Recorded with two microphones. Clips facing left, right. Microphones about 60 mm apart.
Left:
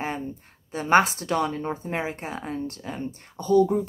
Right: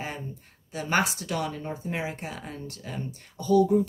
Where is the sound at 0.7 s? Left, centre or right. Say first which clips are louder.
Left 7 dB; left.